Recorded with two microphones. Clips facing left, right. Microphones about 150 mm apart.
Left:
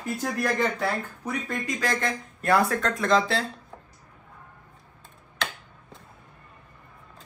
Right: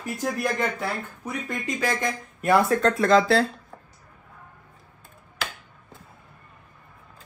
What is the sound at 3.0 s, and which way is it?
Speech, 40° right (ahead or behind).